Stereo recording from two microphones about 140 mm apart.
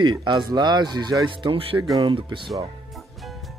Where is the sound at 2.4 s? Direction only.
Centre (ahead or behind).